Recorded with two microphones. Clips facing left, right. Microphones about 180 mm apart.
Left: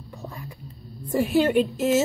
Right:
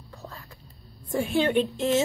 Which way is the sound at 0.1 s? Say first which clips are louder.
Left 5 dB; 15° left (ahead or behind).